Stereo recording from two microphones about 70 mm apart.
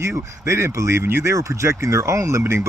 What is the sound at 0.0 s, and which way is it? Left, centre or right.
Speech, right.